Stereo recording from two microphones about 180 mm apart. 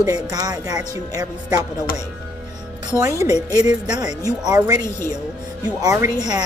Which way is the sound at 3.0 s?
15° right (ahead or behind).